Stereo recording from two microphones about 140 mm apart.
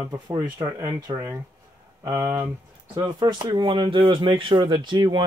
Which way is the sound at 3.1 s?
30° right (ahead or behind).